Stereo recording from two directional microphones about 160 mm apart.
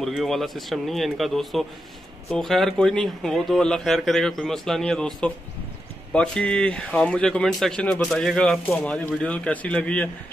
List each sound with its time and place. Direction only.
0.0 s speech: centre (ahead or behind)